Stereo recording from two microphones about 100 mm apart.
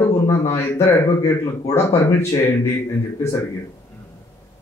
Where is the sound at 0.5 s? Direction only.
30° left (ahead or behind).